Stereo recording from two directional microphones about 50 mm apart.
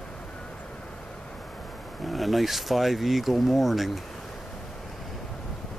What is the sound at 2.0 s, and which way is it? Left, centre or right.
Speech, centre.